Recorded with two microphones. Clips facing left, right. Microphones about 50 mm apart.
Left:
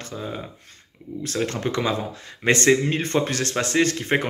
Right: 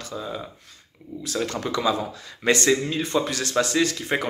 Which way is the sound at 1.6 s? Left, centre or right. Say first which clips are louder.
Even; left.